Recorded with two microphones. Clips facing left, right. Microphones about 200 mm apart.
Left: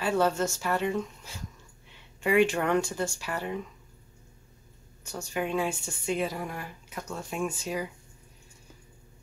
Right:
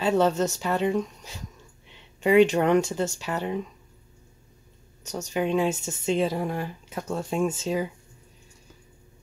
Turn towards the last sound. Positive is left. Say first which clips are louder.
# right 6 dB
turn(degrees=-25)  # may be behind; listen again after turning